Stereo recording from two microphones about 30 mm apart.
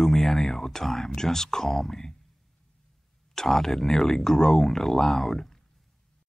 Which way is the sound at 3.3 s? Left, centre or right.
Centre.